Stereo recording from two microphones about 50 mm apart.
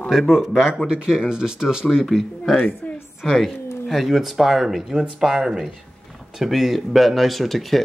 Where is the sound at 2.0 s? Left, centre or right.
Centre.